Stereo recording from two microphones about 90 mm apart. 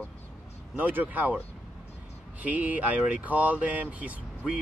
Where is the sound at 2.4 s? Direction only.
15° right (ahead or behind).